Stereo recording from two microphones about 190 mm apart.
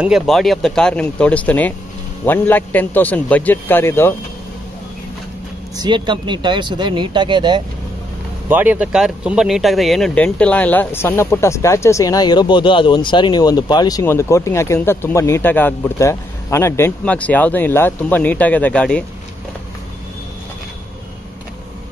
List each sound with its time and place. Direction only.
0.0 s speech: centre (ahead or behind)
5.8 s speech: 25° right (ahead or behind)
8.5 s speech: 10° right (ahead or behind); by 19.0 s 5° left (ahead or behind)